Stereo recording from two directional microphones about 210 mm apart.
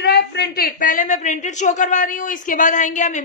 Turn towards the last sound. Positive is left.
turn(degrees=35)  # may be behind; listen again after turning